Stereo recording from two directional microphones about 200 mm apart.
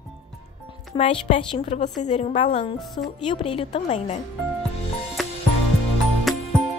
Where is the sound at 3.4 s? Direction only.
25° left (ahead or behind).